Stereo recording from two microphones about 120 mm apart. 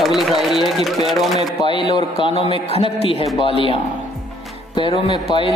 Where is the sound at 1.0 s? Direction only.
Centre (ahead or behind).